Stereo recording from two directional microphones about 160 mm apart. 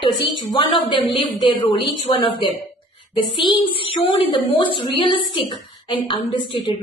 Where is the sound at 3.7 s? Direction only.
30° left (ahead or behind).